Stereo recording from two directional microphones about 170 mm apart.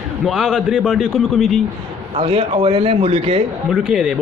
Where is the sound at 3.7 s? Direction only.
5° right (ahead or behind).